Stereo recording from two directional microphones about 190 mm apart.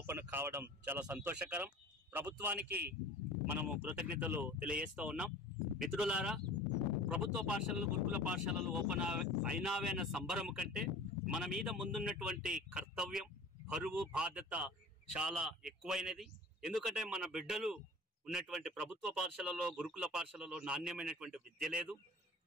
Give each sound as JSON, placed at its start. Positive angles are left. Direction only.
{"t": 0.0, "sound": "speech", "side_deg": -10}
{"t": 2.7, "sound": "a man's voice", "side_deg": -55}
{"t": 3.6, "sound": "speech", "side_deg": -5}